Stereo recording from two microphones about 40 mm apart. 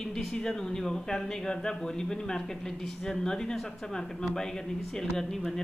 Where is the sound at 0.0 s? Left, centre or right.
Centre.